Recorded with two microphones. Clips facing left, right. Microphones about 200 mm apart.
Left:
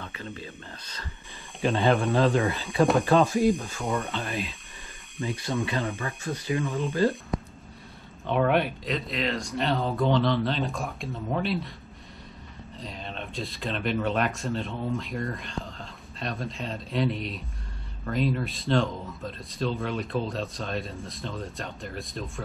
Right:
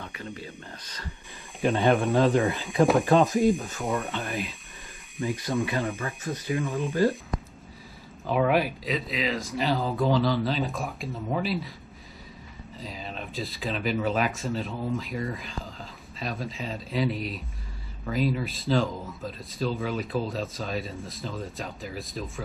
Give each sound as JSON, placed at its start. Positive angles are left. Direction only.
{"t": 0.0, "sound": "a sound", "side_deg": -15}
{"t": 1.6, "sound": "speech", "side_deg": -15}
{"t": 2.8, "sound": "speech", "side_deg": 0}
{"t": 3.1, "sound": "speech", "side_deg": -15}
{"t": 3.3, "sound": "speech", "side_deg": 0}
{"t": 5.9, "sound": "speech", "side_deg": 0}
{"t": 7.3, "sound": "a sound", "side_deg": 0}
{"t": 8.3, "sound": "speech", "side_deg": -5}
{"t": 12.7, "sound": "speech", "side_deg": 0}